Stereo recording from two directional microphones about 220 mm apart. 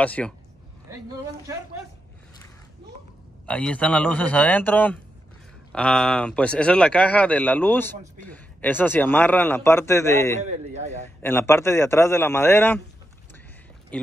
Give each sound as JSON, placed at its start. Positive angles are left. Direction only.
{"t": 0.0, "sound": "a man's voice", "side_deg": 5}
{"t": 3.4, "sound": "a man's voice", "side_deg": 5}
{"t": 10.5, "sound": "speech", "side_deg": -30}
{"t": 11.2, "sound": "a man's voice", "side_deg": 10}